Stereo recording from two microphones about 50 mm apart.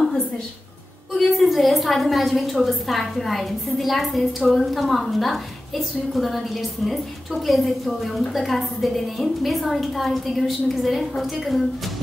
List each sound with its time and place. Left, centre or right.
1.1 s a woman's voice: centre